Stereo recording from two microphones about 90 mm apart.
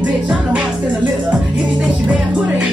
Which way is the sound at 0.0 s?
10° right (ahead or behind).